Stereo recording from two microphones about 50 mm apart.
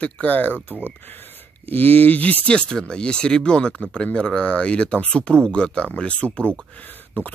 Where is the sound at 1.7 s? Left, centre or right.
Left.